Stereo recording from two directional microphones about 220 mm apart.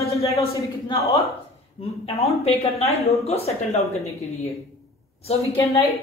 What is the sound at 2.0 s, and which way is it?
A woman's voice, 30° left (ahead or behind).